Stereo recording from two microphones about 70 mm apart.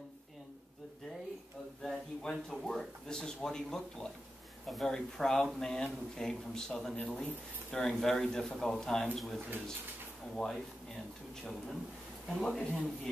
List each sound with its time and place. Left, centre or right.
1.8 s a man's voice: centre
12.4 s a man's voice: centre